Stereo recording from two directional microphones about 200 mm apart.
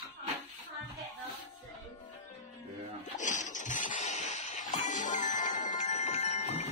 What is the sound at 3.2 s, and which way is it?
Music, 40° left (ahead or behind).